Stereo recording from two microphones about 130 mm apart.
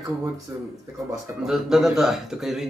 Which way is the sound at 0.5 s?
20° right (ahead or behind).